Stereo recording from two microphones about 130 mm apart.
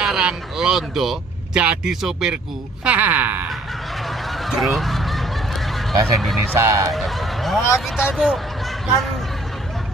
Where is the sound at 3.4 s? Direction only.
Centre (ahead or behind).